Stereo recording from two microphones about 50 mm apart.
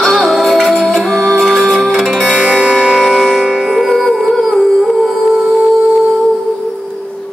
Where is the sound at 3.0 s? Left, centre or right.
Centre.